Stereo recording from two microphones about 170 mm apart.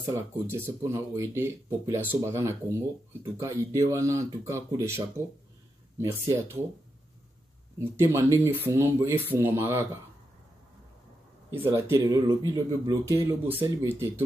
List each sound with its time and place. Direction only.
0.5 s speech: 15° right (ahead or behind)
7.8 s speech: 15° right (ahead or behind)
11.5 s speech: 15° right (ahead or behind)